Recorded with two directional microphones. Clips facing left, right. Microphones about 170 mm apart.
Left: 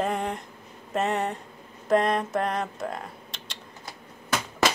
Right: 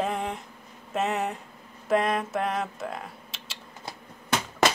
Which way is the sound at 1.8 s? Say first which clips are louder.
Left 2 dB; 5° right (ahead or behind).